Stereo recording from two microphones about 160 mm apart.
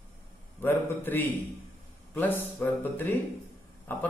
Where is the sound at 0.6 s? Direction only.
10° left (ahead or behind).